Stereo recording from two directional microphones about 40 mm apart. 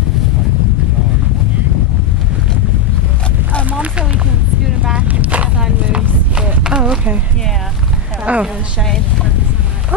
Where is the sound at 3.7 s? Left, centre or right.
Right.